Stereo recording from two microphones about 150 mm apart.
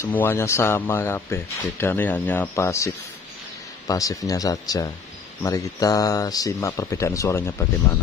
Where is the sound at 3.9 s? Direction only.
25° left (ahead or behind).